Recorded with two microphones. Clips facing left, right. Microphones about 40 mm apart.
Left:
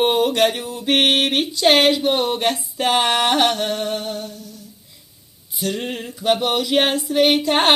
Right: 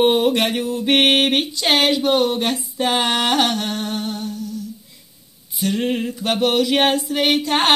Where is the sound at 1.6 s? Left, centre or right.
Centre.